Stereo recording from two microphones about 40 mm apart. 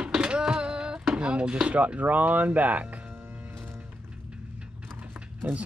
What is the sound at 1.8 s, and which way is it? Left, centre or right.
Speech, right.